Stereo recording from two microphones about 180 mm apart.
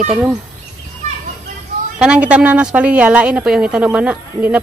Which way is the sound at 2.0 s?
5° right (ahead or behind).